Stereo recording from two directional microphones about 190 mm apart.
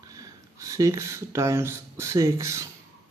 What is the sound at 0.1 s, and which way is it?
Speech, 15° right (ahead or behind).